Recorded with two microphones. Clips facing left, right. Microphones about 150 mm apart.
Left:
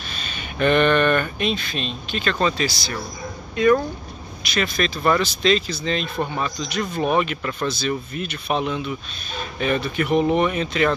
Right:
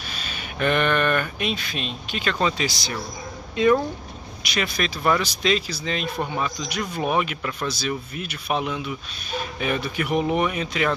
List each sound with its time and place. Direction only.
0.1 s speech: 5° right (ahead or behind); by 3.7 s 25° right (ahead or behind)
4.4 s speech: 15° right (ahead or behind)